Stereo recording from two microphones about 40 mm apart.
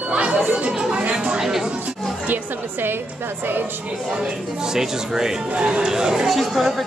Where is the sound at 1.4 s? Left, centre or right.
Centre.